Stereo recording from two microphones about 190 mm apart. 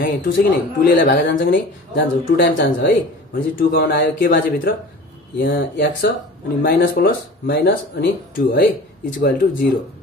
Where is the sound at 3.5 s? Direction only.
55° left (ahead or behind).